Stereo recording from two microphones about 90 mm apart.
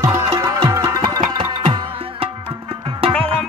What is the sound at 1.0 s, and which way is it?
Music, 65° right (ahead or behind).